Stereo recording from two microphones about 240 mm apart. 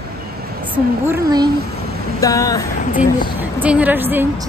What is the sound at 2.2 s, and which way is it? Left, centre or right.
Speech, centre.